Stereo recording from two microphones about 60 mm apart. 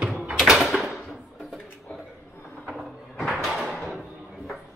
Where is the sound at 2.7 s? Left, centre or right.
Centre.